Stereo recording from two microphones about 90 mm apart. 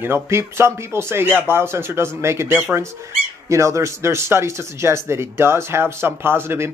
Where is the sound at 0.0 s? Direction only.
30° right (ahead or behind).